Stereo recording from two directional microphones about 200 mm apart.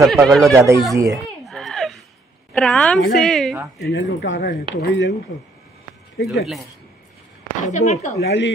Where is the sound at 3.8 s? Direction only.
60° left (ahead or behind).